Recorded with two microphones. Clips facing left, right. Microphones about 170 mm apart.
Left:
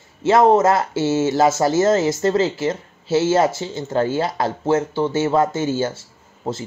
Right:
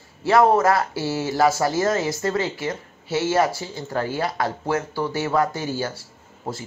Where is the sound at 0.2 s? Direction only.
20° left (ahead or behind).